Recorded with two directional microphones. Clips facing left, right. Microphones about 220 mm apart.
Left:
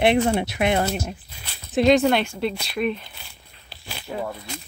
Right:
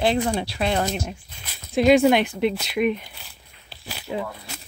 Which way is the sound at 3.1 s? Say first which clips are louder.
Even; centre (ahead or behind).